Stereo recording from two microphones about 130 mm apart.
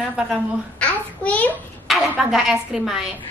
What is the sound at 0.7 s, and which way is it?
Babbling, 10° left (ahead or behind).